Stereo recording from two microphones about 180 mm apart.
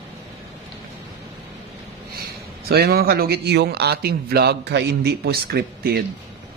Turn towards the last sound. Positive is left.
turn(degrees=-60)  # may be behind; listen again after turning